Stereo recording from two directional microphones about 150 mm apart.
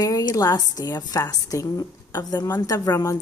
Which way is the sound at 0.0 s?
25° left (ahead or behind).